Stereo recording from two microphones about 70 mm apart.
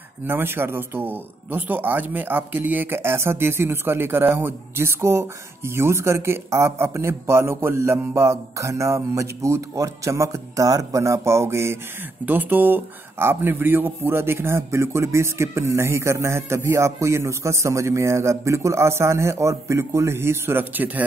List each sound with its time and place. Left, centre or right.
0.3 s speech: right
12.3 s speech: right